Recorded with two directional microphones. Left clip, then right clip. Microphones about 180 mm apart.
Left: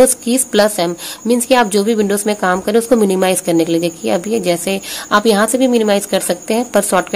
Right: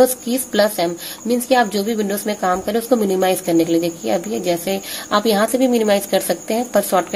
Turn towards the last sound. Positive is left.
turn(degrees=30)  # may be behind; listen again after turning